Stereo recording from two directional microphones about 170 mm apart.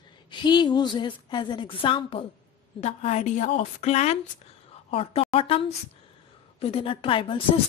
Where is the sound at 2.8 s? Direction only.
40° left (ahead or behind).